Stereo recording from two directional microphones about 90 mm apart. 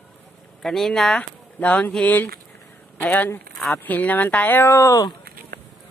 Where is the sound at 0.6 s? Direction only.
5° left (ahead or behind); by 4.9 s 25° left (ahead or behind).